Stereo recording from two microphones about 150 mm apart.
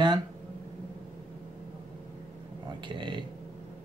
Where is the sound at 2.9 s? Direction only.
30° right (ahead or behind).